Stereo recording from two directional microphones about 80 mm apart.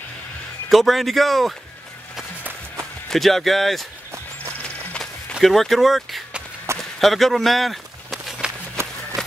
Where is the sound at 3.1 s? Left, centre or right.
Centre.